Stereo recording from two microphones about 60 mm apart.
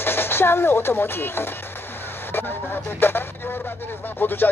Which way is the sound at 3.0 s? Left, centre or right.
Left.